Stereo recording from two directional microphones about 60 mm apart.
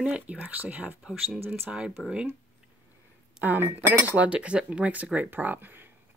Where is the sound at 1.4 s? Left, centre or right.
Right.